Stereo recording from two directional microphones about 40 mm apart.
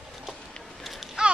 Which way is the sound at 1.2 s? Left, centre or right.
Right.